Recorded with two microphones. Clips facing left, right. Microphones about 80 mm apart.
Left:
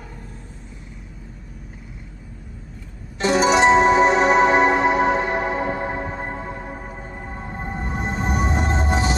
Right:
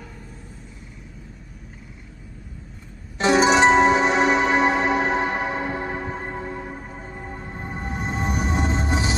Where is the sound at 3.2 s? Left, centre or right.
Right.